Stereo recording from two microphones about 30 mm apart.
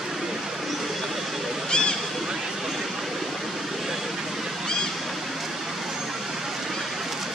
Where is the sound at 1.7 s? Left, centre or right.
Left.